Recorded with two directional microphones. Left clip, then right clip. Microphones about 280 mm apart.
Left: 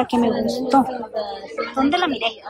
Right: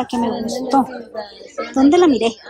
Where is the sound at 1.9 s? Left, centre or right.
Centre.